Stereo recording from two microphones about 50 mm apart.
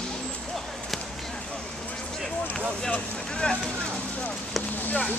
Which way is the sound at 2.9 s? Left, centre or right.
Centre.